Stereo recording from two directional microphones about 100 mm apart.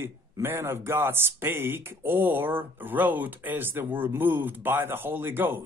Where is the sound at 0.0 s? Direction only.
25° right (ahead or behind).